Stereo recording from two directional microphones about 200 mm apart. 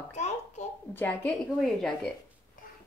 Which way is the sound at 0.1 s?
35° left (ahead or behind).